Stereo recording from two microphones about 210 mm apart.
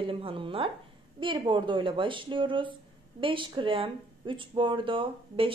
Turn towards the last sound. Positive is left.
turn(degrees=-25)  # may be behind; listen again after turning